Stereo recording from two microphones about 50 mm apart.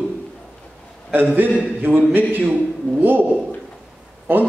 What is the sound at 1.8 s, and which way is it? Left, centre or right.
A man's voice, right.